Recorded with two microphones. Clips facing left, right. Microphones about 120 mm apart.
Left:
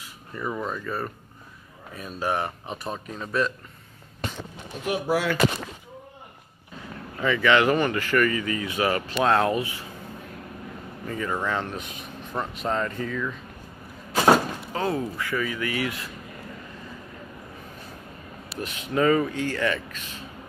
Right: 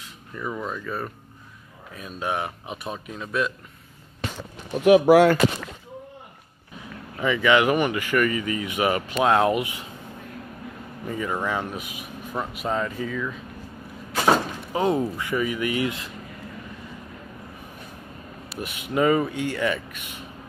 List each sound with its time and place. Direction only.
0.0 s speech: 5° left (ahead or behind)
4.8 s speech: 85° right
7.2 s speech: 15° right (ahead or behind)
11.1 s speech: 10° right (ahead or behind)
14.7 s speech: 20° right (ahead or behind)
18.6 s speech: 15° right (ahead or behind)